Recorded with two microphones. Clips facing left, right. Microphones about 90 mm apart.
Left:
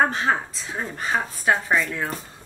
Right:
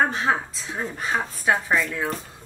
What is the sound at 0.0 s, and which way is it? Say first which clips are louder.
Speech: left 1 dB; centre (ahead or behind).